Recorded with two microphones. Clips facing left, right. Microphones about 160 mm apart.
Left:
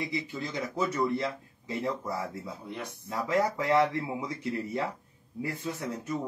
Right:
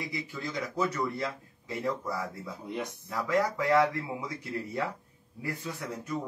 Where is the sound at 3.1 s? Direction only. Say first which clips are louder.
Left 1 dB; 25° left (ahead or behind).